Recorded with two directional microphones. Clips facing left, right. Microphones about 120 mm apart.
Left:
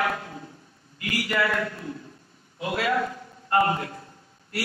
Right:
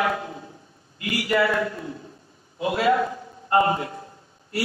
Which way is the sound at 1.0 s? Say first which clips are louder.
Right 4 dB; 25° right (ahead or behind).